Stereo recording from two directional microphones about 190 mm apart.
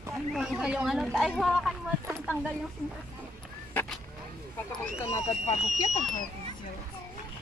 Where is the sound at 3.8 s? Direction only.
10° left (ahead or behind).